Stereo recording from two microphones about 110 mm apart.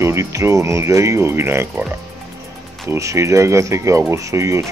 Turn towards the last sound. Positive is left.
turn(degrees=-25)  # may be behind; listen again after turning